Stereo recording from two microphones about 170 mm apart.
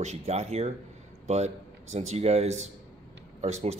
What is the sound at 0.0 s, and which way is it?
Speech, 40° right (ahead or behind).